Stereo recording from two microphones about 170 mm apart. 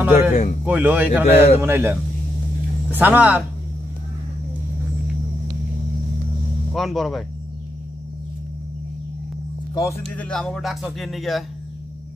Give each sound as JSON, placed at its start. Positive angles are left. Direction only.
{"t": 0.3, "sound": "speech", "side_deg": 45}
{"t": 0.7, "sound": "a man's voice", "side_deg": -10}
{"t": 6.7, "sound": "speech", "side_deg": 0}
{"t": 9.8, "sound": "speech", "side_deg": 15}